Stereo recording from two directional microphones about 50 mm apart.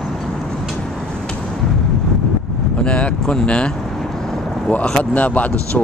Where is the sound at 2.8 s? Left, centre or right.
Left.